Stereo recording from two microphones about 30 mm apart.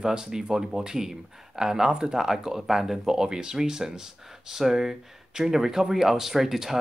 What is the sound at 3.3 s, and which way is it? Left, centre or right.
Speech, right.